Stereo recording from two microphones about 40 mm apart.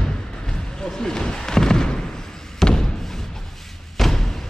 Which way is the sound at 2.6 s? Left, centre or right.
Centre.